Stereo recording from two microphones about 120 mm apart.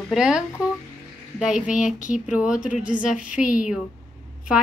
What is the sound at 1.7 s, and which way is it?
Speech, 90° left.